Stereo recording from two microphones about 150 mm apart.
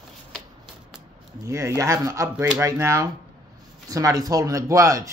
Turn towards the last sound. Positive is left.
turn(degrees=-20)  # may be behind; listen again after turning